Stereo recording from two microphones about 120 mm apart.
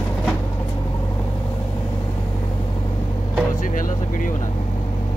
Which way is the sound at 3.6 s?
90° left.